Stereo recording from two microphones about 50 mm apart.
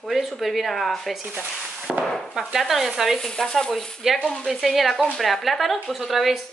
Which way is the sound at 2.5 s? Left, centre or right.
Centre.